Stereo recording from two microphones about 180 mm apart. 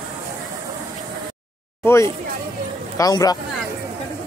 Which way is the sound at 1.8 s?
15° left (ahead or behind).